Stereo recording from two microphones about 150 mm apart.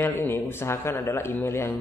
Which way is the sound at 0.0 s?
15° left (ahead or behind).